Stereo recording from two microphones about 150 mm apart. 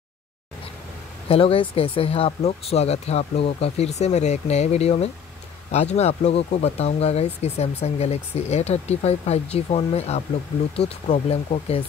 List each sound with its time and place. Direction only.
1.3 s speech: 35° left (ahead or behind)